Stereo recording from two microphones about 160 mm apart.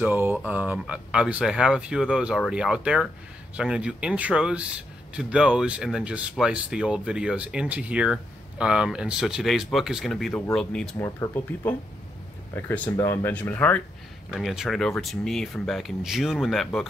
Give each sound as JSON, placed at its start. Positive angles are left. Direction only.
{"t": 0.0, "sound": "a man's voice", "side_deg": -10}
{"t": 11.0, "sound": "speech", "side_deg": 15}
{"t": 14.3, "sound": "a man's voice", "side_deg": 0}